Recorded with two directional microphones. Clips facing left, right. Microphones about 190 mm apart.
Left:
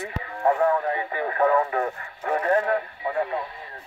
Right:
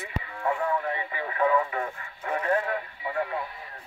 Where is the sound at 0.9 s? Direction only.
45° left (ahead or behind).